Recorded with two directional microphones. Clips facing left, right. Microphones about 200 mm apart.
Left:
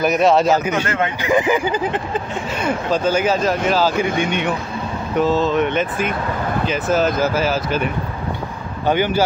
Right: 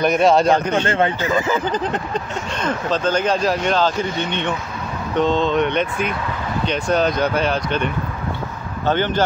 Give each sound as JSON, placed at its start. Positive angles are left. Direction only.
{"t": 0.0, "sound": "speech", "side_deg": 0}
{"t": 0.8, "sound": "speech", "side_deg": -30}
{"t": 1.2, "sound": "speech", "side_deg": 15}